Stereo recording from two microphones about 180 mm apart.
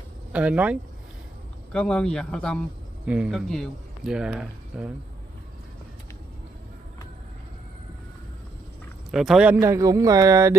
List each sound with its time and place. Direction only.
0.3 s a man's voice: 5° right (ahead or behind)
1.7 s speech: 5° left (ahead or behind)
9.1 s a man's voice: centre (ahead or behind); by 10.5 s 20° right (ahead or behind)